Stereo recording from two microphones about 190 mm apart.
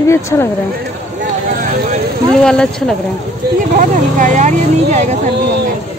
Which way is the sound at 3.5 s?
45° right (ahead or behind).